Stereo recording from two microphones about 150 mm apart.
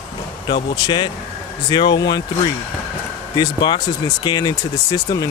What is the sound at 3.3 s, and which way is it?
Speech, 30° left (ahead or behind).